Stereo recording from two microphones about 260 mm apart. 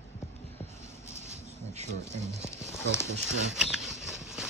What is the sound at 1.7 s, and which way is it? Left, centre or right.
Speech, right.